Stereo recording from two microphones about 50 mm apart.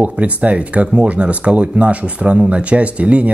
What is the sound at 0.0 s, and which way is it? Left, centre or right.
Speech, right.